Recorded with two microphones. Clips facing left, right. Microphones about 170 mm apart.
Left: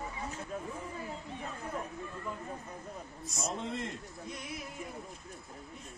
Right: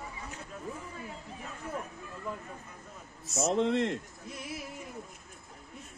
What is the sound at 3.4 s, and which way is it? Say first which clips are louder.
Speech: right 10 dB; 85° right.